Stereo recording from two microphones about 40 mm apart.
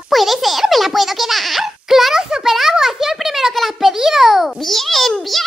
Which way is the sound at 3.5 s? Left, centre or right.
Centre.